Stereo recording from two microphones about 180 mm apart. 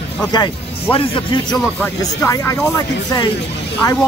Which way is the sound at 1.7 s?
5° left (ahead or behind).